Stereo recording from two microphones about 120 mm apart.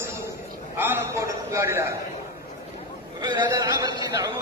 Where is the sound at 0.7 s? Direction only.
15° right (ahead or behind).